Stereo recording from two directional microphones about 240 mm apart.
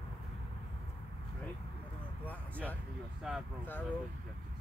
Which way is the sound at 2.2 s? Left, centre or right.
Centre.